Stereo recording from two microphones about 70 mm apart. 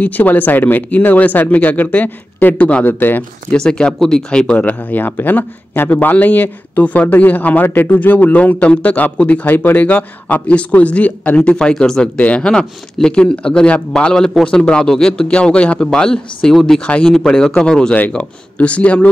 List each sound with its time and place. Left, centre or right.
0.0 s speech: left
2.9 s speech: left
3.5 s a man's voice: centre